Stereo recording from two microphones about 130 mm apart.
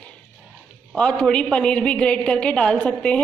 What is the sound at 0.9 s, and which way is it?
A woman's voice, 10° left (ahead or behind).